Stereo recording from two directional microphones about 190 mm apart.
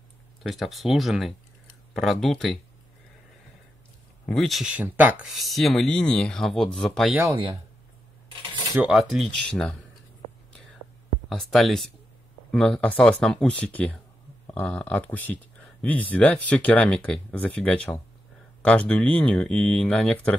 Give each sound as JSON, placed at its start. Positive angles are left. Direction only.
{"t": 0.4, "sound": "speech", "side_deg": 0}
{"t": 4.3, "sound": "speech", "side_deg": 0}
{"t": 8.3, "sound": "a sound", "side_deg": -25}
{"t": 8.7, "sound": "speech", "side_deg": -5}
{"t": 11.2, "sound": "speech", "side_deg": 0}